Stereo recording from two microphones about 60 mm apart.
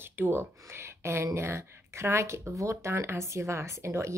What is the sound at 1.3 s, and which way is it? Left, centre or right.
Speech, right.